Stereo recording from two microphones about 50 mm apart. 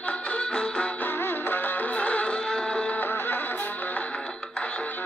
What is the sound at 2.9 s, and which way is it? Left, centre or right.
Music, left.